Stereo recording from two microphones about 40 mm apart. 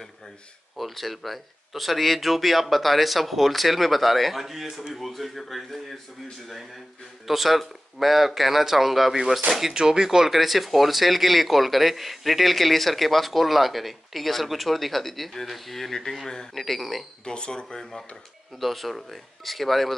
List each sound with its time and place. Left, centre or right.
0.7 s speech: centre
7.2 s speech: centre
9.8 s speech: centre
17.2 s speech: left
18.6 s speech: centre